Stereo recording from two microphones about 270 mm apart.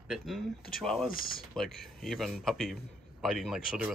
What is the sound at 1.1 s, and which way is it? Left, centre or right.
Speech, left.